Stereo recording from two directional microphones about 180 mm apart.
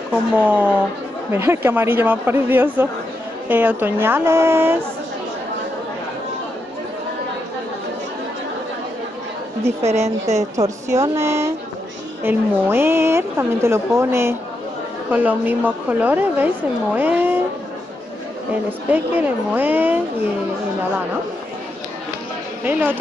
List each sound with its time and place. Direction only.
0.4 s a woman's voice: 10° right (ahead or behind)
9.8 s a woman's voice: 40° right (ahead or behind)
10.5 s a woman's voice: 15° right (ahead or behind)
18.5 s a woman's voice: 10° right (ahead or behind)
22.7 s a woman's voice: 10° right (ahead or behind)